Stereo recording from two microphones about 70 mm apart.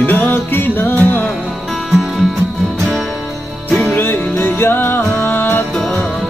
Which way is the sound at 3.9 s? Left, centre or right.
Left.